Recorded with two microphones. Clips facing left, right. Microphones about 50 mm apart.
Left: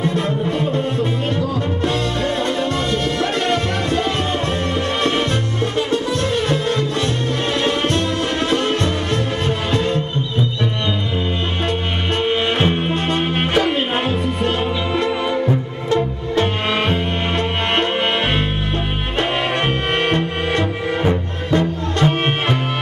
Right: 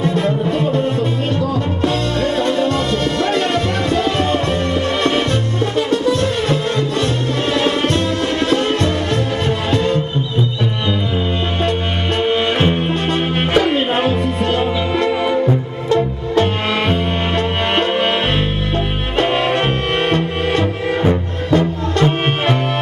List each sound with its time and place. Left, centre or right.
0.0 s music: left
2.5 s music: left
5.9 s music: left
8.5 s music: centre
12.2 s music: centre
14.0 s music: centre
15.0 s music: centre
21.5 s music: centre